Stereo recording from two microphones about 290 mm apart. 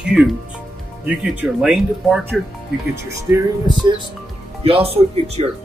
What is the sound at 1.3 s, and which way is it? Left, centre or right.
Speech, centre.